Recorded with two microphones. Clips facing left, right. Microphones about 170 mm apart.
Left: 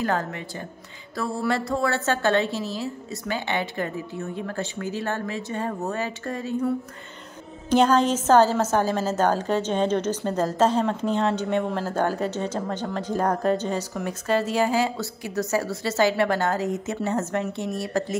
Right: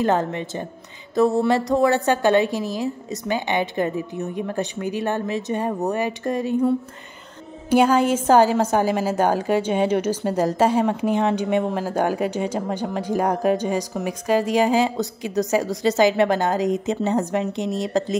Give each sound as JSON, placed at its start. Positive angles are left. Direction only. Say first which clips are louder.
{"t": 0.0, "sound": "a woman's voice", "louder": "right 5 dB", "side_deg": -20}
{"t": 7.7, "sound": "a woman's voice", "louder": "right 2 dB", "side_deg": -10}